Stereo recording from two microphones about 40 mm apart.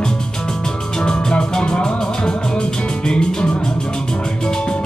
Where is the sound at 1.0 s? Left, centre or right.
Left.